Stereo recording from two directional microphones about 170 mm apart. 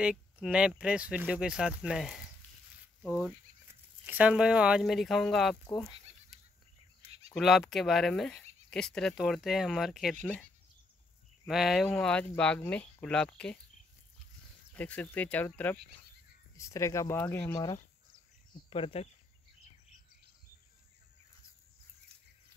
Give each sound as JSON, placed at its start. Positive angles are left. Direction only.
{"t": 0.0, "sound": "speech", "side_deg": -5}
{"t": 4.0, "sound": "speech", "side_deg": -10}
{"t": 5.7, "sound": "speech", "side_deg": 20}
{"t": 7.3, "sound": "speech", "side_deg": 0}
{"t": 11.4, "sound": "speech", "side_deg": 0}
{"t": 14.7, "sound": "speech", "side_deg": 10}
{"t": 18.7, "sound": "speech", "side_deg": 35}